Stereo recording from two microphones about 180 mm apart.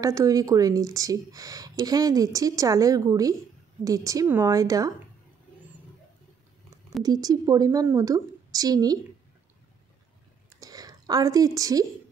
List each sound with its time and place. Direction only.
0.0 s speech: 20° right (ahead or behind)
7.0 s speech: 20° right (ahead or behind)
10.6 s a sound: 20° right (ahead or behind)